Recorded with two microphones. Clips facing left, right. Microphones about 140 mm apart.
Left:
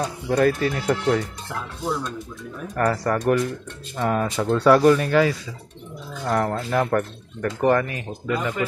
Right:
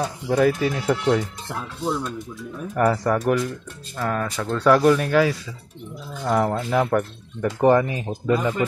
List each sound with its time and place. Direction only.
0.0 s speech: 5° right (ahead or behind)
2.7 s speech: 5° right (ahead or behind)
4.0 s speech: 15° left (ahead or behind)
4.6 s speech: centre (ahead or behind)
7.6 s speech: 20° right (ahead or behind)